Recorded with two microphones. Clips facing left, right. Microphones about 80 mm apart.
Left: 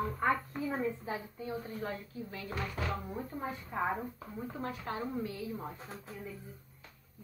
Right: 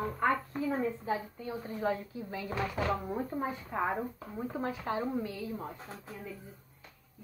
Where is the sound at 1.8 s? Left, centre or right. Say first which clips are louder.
Right 6 dB; centre.